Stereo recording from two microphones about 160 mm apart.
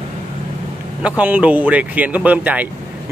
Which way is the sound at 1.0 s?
10° right (ahead or behind).